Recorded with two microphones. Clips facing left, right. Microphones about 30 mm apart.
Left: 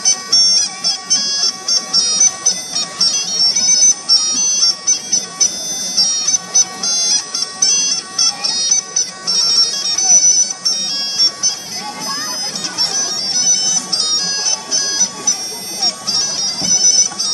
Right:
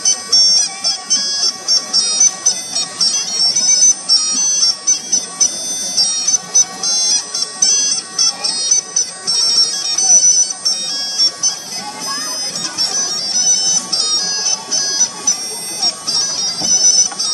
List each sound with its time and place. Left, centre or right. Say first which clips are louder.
0.0 s music: even; centre
5.9 s bagpipes: even; centre